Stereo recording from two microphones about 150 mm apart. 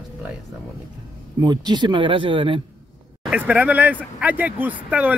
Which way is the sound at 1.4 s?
30° right (ahead or behind).